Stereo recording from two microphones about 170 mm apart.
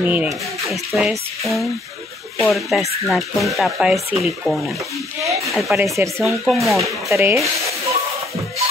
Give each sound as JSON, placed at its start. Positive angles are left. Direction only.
{"t": 0.0, "sound": "speech", "side_deg": -10}
{"t": 5.2, "sound": "a sound", "side_deg": -20}
{"t": 5.5, "sound": "speech", "side_deg": 0}
{"t": 6.8, "sound": "speech", "side_deg": -15}